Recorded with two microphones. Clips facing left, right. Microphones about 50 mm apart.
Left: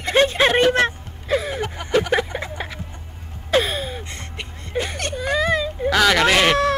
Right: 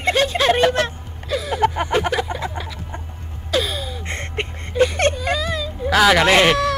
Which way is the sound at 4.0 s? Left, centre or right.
Right.